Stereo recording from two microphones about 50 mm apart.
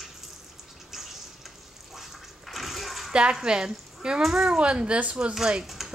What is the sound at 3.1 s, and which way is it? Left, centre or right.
A child's voice, centre.